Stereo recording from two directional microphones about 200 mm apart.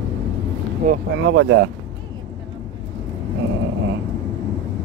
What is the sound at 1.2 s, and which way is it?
Speech, 65° right (ahead or behind).